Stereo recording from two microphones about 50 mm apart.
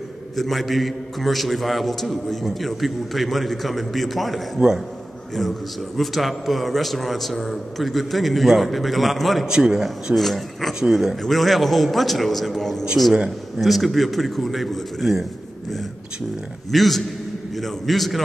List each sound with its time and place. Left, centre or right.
0.4 s a man's voice: centre
4.6 s speech: centre
5.9 s a man's voice: centre
9.5 s speech: centre
10.1 s a man's voice: centre
10.7 s a man's voice: centre
16.7 s a man's voice: centre